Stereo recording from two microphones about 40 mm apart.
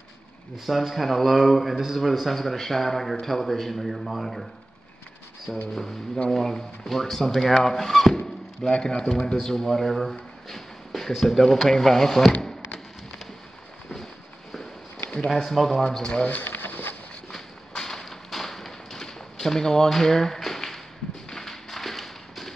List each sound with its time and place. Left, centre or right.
0.7 s speech: centre
5.5 s speech: centre
8.6 s speech: centre
12.4 s a sound: centre
15.0 s speech: centre
16.4 s a sound: left
17.3 s thump: centre
21.3 s tap: centre